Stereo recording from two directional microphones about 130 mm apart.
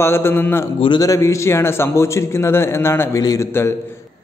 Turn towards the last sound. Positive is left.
turn(degrees=20)  # may be behind; listen again after turning